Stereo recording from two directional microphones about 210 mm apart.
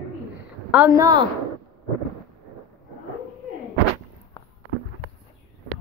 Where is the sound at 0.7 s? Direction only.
10° right (ahead or behind).